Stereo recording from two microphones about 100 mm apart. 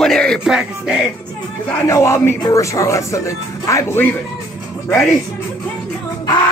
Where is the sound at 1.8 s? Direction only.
30° left (ahead or behind).